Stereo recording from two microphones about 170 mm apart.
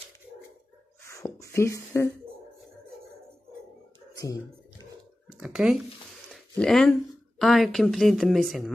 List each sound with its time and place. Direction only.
1.0 s beatboxing: 20° left (ahead or behind)
4.2 s music: 20° left (ahead or behind)
5.4 s speech: 5° right (ahead or behind)
6.3 s a sound: 5° left (ahead or behind)
7.3 s speech: centre (ahead or behind)